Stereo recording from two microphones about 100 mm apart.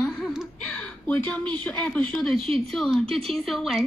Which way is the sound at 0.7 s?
15° left (ahead or behind).